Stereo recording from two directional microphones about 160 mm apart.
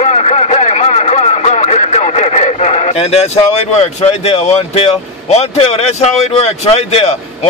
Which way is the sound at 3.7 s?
40° left (ahead or behind).